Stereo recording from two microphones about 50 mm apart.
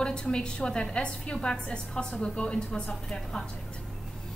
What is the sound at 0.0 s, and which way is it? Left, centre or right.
A woman's voice, centre.